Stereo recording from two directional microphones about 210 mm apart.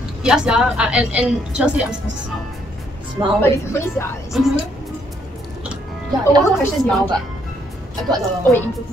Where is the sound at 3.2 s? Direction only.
20° right (ahead or behind).